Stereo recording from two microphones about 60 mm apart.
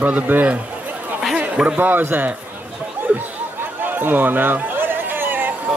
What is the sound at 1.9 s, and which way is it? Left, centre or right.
Speech, right.